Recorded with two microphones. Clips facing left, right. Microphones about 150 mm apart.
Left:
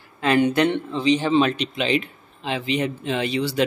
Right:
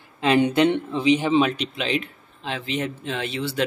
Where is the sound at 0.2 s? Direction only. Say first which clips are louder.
Even; 20° right (ahead or behind).